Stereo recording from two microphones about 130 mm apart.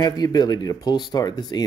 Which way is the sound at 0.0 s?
30° left (ahead or behind).